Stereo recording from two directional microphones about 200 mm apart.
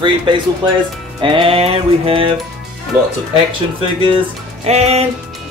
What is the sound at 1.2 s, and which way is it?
Music, 25° right (ahead or behind).